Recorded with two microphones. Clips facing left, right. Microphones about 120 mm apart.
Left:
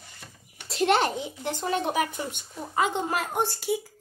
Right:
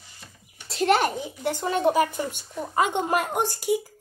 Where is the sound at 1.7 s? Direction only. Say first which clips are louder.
Right 6 dB; 45° right (ahead or behind).